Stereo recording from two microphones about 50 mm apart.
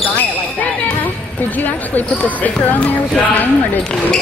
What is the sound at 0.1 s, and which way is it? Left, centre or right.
Basketball bounce, left.